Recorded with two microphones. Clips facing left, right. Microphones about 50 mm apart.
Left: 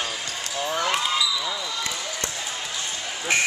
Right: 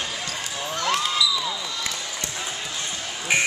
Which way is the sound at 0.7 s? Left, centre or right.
Centre.